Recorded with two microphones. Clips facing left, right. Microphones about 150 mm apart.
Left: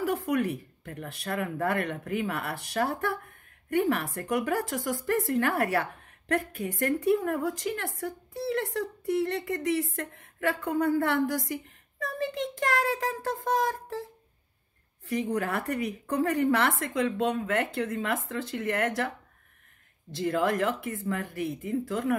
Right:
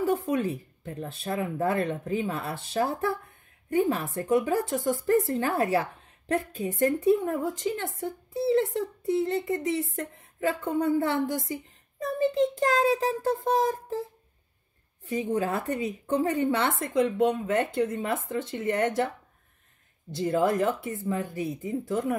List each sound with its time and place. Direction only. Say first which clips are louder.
0.0 s a woman's voice: right 2 dB; 25° right (ahead or behind)
15.3 s a woman's voice: right 2 dB; 25° right (ahead or behind)
20.2 s a woman's voice: right 2 dB; 25° right (ahead or behind)